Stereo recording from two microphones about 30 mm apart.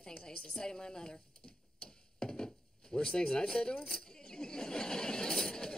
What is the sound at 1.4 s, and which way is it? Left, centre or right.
Mechanisms, left.